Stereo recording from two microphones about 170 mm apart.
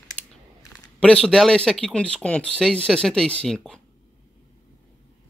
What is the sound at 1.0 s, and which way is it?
Speech, 5° left (ahead or behind).